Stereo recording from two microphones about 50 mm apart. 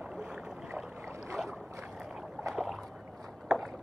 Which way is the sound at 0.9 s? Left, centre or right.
Right.